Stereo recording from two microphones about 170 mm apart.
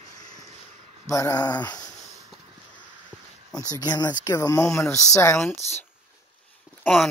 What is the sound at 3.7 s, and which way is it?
Speech, 20° left (ahead or behind).